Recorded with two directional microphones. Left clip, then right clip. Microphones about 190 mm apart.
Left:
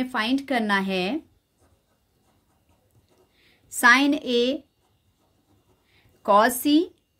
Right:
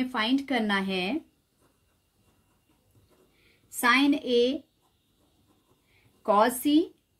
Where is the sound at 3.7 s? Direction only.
35° left (ahead or behind).